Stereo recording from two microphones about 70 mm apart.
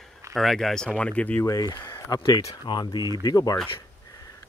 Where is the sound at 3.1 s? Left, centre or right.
Left.